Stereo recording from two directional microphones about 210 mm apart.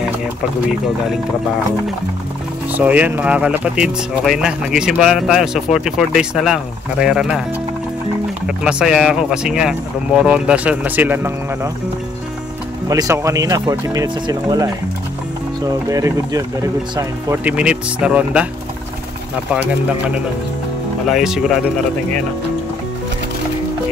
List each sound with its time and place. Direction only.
2.7 s speech: 5° right (ahead or behind)
8.5 s speech: 5° right (ahead or behind)
12.8 s speech: 15° right (ahead or behind)
19.5 s speech: 5° right (ahead or behind)